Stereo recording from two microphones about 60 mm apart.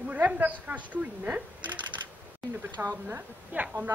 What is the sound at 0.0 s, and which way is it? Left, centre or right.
A woman's voice, right.